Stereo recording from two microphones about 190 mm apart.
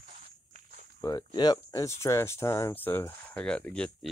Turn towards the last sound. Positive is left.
turn(degrees=5)  # may be behind; listen again after turning